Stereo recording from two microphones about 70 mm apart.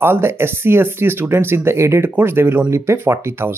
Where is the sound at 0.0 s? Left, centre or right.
Right.